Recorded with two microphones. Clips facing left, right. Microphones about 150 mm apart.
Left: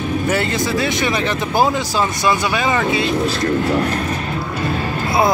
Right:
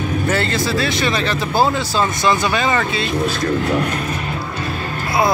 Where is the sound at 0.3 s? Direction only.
15° left (ahead or behind).